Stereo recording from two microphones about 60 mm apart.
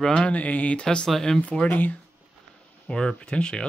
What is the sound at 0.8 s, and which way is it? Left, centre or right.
Speech, centre.